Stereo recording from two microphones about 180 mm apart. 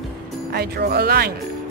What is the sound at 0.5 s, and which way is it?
Speech, 60° right (ahead or behind).